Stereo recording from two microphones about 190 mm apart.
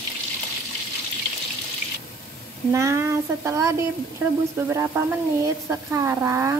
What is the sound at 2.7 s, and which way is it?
A woman's voice, 15° right (ahead or behind).